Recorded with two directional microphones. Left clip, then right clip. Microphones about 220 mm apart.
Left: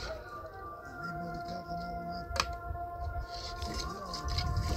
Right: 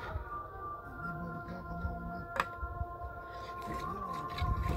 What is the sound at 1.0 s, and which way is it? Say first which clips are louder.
Music: left 2 dB; 25° right (ahead or behind).